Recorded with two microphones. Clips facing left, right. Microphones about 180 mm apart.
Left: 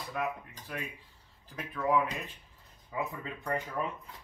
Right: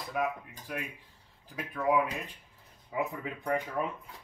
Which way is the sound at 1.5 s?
15° right (ahead or behind).